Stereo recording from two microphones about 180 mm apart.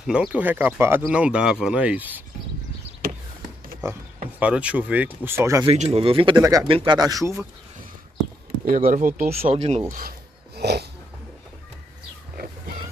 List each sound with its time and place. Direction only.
0.0 s speech: 5° right (ahead or behind)
4.4 s speech: 5° right (ahead or behind)
5.7 s speech: 35° right (ahead or behind); by 7.4 s 15° right (ahead or behind)
8.6 s speech: 50° right (ahead or behind)
9.9 s a sound: 60° right (ahead or behind)